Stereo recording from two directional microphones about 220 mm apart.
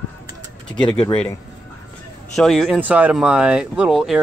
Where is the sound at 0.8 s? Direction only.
20° left (ahead or behind).